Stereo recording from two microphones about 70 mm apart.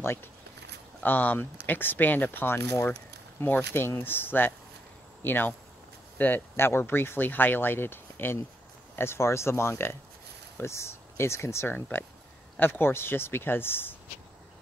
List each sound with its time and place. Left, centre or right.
0.0 s speech: left
12.5 s speech: left